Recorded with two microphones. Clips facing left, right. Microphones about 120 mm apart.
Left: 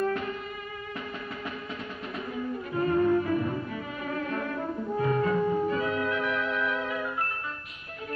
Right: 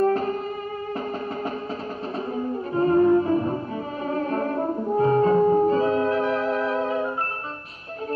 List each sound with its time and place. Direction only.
0.0 s music: 35° right (ahead or behind)
2.3 s music: 35° right (ahead or behind)
4.1 s brass instrument: 35° right (ahead or behind)